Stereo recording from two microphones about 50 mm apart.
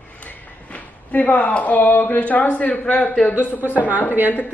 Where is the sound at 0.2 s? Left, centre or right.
Left.